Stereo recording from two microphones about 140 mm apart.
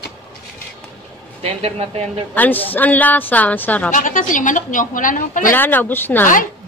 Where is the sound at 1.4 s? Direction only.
45° right (ahead or behind).